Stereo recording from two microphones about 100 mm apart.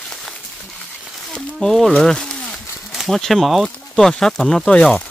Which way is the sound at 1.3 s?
5° left (ahead or behind).